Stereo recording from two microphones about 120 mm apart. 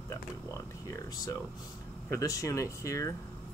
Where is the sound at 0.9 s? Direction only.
25° left (ahead or behind).